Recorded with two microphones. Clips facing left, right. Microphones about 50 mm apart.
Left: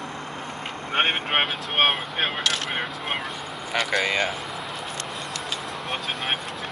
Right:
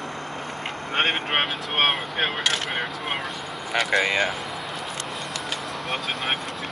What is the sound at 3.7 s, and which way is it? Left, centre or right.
Speech, centre.